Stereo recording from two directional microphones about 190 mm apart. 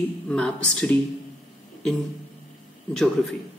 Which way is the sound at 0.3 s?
5° left (ahead or behind).